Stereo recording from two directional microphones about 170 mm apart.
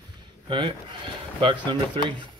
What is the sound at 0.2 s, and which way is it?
Speech, 30° right (ahead or behind).